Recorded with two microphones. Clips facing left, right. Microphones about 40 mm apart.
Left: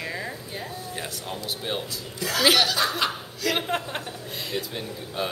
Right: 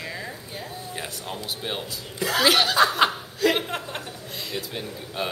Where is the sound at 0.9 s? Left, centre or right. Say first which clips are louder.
Right 2 dB; centre.